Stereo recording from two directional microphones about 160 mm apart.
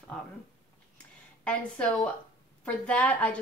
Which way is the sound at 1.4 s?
5° left (ahead or behind).